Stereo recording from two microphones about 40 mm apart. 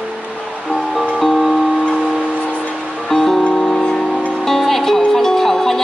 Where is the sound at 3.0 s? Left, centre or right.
Centre.